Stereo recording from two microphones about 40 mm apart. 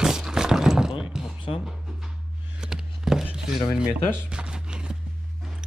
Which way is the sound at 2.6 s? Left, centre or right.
Centre.